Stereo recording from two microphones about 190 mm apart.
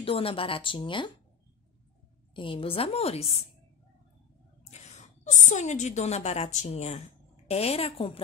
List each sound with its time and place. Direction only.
0.0 s speech: 30° left (ahead or behind)
2.3 s a woman's voice: 25° left (ahead or behind)
4.6 s a woman's voice: 35° left (ahead or behind)